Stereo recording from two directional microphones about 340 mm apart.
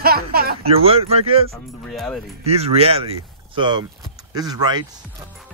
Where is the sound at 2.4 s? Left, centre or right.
Centre.